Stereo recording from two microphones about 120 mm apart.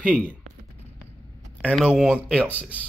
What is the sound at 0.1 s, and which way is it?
Speech, 10° left (ahead or behind).